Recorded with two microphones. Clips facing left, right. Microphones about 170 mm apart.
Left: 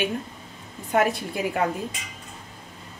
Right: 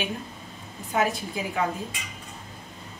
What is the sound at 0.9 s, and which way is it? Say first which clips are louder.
Speech: left 3 dB; 60° left (ahead or behind).